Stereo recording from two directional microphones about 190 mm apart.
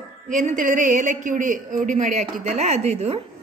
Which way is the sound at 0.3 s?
40° right (ahead or behind).